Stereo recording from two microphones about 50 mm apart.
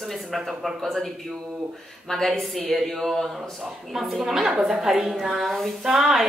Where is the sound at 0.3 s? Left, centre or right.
Centre.